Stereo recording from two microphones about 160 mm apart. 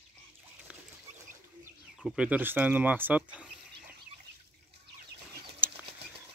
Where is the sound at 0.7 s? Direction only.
5° right (ahead or behind).